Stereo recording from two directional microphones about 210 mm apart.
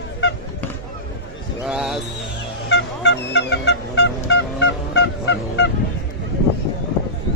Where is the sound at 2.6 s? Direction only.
55° left (ahead or behind).